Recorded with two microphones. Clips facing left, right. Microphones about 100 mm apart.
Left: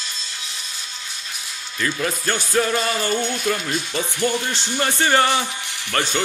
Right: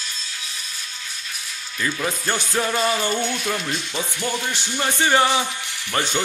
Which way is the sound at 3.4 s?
5° right (ahead or behind).